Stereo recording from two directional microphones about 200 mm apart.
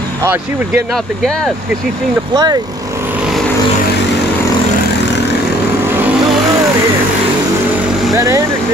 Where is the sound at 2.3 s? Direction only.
20° right (ahead or behind).